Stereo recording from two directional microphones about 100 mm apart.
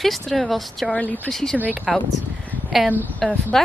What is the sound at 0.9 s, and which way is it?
Speech, 15° left (ahead or behind).